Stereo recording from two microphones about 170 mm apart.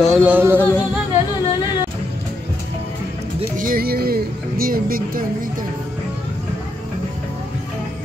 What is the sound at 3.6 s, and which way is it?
Music, 60° right (ahead or behind).